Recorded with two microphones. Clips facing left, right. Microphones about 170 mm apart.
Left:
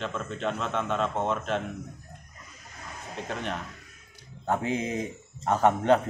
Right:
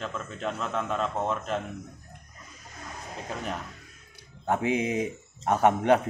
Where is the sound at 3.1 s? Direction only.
5° right (ahead or behind).